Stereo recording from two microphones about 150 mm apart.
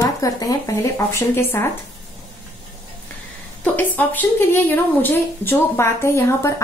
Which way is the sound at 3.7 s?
10° left (ahead or behind).